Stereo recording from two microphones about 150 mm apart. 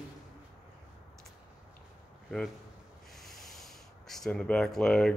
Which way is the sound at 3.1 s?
Centre (ahead or behind).